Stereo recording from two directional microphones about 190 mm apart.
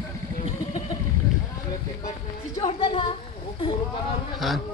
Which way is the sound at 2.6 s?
25° left (ahead or behind).